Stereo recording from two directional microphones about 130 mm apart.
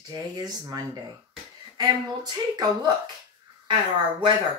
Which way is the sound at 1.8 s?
30° right (ahead or behind).